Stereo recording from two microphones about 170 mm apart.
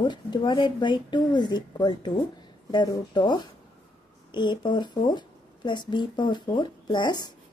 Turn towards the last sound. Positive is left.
turn(degrees=25)  # may be behind; listen again after turning